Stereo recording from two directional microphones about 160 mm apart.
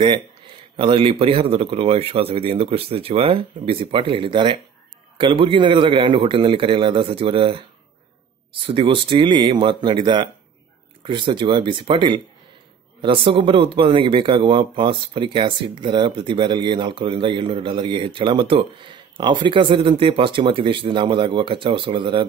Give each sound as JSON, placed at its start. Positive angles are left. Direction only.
{"t": 0.7, "sound": "speech", "side_deg": -35}
{"t": 8.6, "sound": "speech", "side_deg": -35}